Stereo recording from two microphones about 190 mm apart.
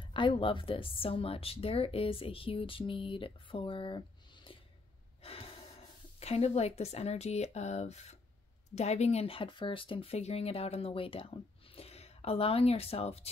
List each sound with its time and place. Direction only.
0.0 s a woman's voice: 25° left (ahead or behind)
5.2 s gasp: 30° left (ahead or behind)
6.1 s speech: 35° left (ahead or behind)